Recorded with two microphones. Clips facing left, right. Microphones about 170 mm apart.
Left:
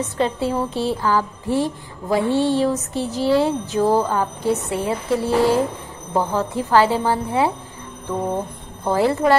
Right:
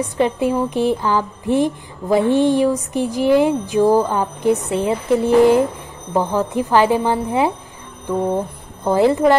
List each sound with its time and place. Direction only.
0.0 s speech: 15° right (ahead or behind)
8.8 s speech: 20° right (ahead or behind)